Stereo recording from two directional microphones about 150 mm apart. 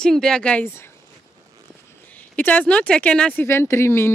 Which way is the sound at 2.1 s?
10° left (ahead or behind).